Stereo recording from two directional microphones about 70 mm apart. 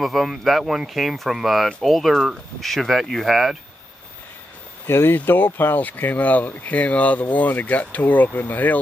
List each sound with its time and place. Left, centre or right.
0.0 s speech: centre
4.8 s speech: left